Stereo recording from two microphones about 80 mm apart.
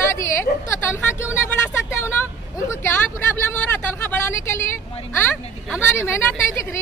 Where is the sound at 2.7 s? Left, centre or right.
Left.